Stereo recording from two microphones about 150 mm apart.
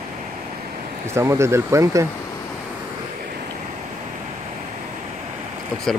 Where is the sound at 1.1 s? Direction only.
20° right (ahead or behind).